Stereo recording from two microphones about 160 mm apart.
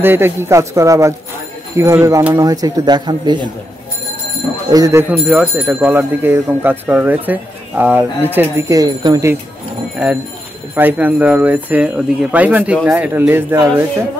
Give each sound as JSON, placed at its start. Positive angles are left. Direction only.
{"t": 0.0, "sound": "speech", "side_deg": -15}
{"t": 4.6, "sound": "speech", "side_deg": -20}
{"t": 5.1, "sound": "speech", "side_deg": -10}
{"t": 10.0, "sound": "speech", "side_deg": -10}